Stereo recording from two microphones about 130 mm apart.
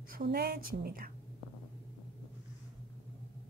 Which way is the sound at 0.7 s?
90° right.